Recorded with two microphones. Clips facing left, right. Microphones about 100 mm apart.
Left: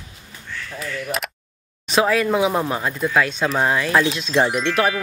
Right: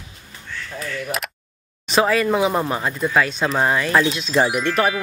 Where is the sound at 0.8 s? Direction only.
Centre (ahead or behind).